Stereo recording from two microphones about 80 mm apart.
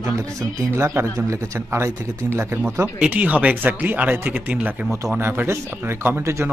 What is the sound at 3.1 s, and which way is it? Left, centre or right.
A man's voice, centre.